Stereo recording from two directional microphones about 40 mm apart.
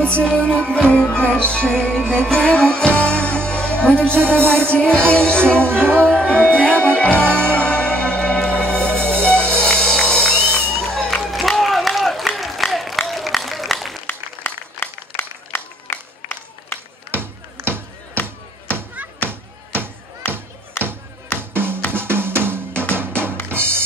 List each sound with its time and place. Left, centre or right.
0.5 s music: left
1.7 s music: centre
5.6 s music: right
6.0 s music: left
11.3 s a sound: centre
13.1 s applause: centre
14.0 s a sound: left
17.2 s music: right
19.2 s a sound: right
20.2 s a sound: left
20.8 s music: left
21.4 s music: right
21.9 s drum: right
22.9 s music: right